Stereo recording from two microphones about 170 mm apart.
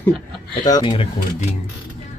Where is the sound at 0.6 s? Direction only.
25° left (ahead or behind).